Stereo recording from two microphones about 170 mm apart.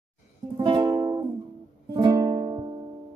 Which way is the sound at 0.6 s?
25° right (ahead or behind).